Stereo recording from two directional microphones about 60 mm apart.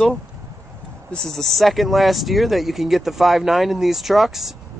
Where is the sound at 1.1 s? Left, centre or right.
Centre.